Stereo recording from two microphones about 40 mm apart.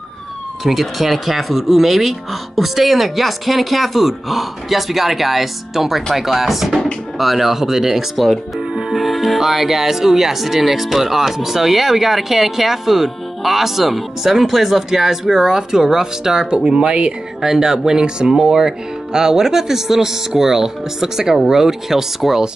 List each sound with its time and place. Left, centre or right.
0.7 s speech: centre; by 17.1 s right
17.4 s speech: centre